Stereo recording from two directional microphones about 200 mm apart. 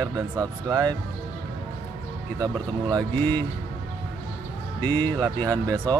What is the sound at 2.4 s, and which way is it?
Speech, 20° right (ahead or behind).